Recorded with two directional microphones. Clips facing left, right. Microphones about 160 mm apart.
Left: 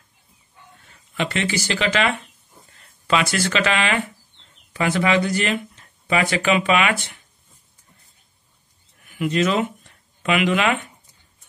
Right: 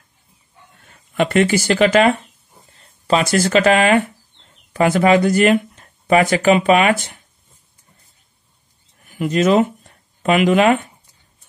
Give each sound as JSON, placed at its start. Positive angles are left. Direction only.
{"t": 1.1, "sound": "speech", "side_deg": -50}
{"t": 9.1, "sound": "speech", "side_deg": -40}